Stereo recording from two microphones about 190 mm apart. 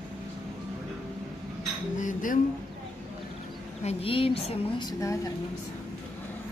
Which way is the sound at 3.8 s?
30° left (ahead or behind).